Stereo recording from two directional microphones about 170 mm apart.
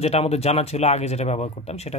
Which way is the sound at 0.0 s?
40° left (ahead or behind).